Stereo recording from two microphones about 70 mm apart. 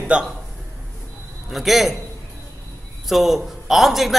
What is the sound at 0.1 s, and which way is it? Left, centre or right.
Speech, centre.